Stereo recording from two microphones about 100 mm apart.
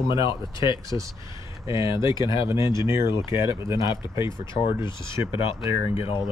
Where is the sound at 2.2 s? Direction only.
55° left (ahead or behind).